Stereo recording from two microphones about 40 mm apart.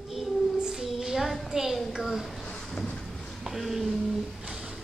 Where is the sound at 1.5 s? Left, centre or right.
Centre.